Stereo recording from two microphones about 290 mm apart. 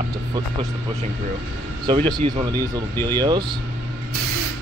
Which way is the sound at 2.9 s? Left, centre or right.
Centre.